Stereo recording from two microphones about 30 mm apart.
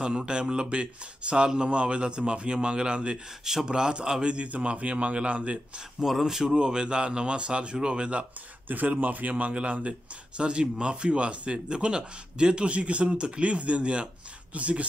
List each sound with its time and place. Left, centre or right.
0.0 s speech: right
1.7 s speech: right
4.2 s speech: right
4.5 s a man's voice: right
6.2 s speech: centre
6.5 s speech: right
8.8 s speech: right
9.3 s a man's voice: right